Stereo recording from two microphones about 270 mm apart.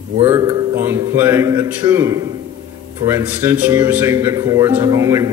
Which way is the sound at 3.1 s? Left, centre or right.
Centre.